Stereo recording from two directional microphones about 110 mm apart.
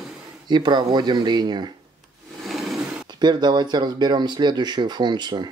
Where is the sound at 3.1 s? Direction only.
40° right (ahead or behind).